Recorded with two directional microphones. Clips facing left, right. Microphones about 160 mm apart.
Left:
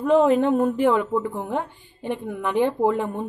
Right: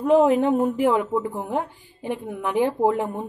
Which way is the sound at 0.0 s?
5° right (ahead or behind).